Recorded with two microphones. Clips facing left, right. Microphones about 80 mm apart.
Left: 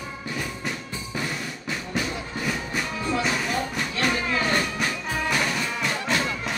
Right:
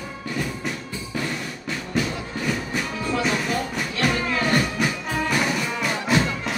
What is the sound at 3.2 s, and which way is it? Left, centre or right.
Music, centre.